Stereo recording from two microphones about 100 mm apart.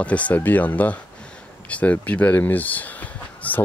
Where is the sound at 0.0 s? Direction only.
15° left (ahead or behind).